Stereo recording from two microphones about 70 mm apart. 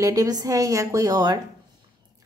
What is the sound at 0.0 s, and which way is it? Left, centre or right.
A woman's voice, right.